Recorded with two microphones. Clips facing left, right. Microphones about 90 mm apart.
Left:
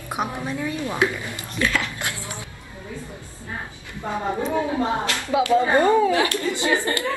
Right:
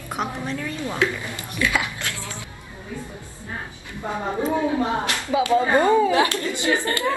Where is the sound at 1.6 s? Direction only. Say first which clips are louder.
Right 1 dB; 15° right (ahead or behind).